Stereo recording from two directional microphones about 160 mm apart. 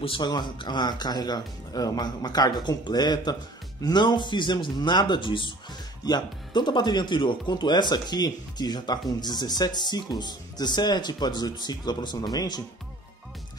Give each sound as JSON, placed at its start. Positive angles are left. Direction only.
{"t": 0.0, "sound": "speech", "side_deg": 30}